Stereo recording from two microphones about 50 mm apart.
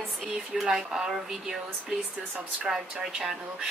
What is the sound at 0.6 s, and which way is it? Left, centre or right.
Speech, centre.